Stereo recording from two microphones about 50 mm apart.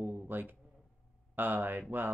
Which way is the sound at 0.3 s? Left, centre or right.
Right.